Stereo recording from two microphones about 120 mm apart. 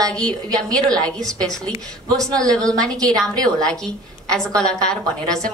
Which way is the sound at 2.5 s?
5° left (ahead or behind).